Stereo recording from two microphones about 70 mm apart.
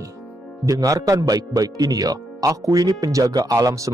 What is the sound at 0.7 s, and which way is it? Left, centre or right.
Speech, right.